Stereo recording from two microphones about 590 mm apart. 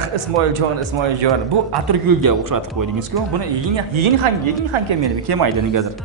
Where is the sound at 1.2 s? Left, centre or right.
Right.